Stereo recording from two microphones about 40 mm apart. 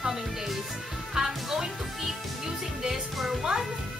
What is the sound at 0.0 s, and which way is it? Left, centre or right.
Music, centre.